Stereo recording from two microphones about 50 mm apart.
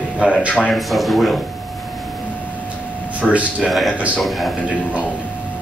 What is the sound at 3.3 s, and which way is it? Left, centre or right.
Speech, right.